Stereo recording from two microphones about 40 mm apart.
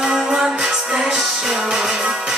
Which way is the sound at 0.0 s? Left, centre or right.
Centre.